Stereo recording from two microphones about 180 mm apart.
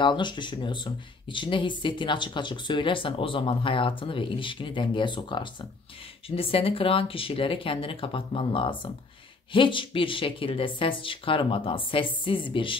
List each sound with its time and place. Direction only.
0.0 s speech: 25° left (ahead or behind)